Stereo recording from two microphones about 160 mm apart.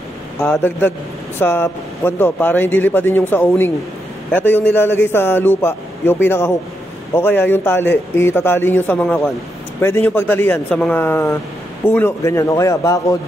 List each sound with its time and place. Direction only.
0.5 s speech: 15° left (ahead or behind)